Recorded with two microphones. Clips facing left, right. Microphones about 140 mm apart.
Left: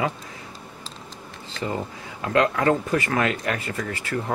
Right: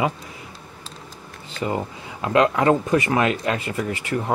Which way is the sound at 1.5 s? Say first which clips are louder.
Right 3 dB; 20° right (ahead or behind).